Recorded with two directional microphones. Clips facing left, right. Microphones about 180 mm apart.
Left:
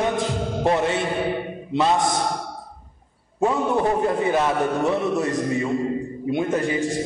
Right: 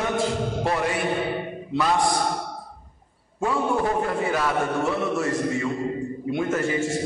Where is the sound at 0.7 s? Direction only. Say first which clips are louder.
Left 4 dB; 25° left (ahead or behind).